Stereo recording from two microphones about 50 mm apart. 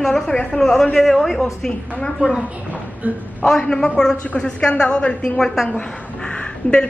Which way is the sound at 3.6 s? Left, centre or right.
Centre.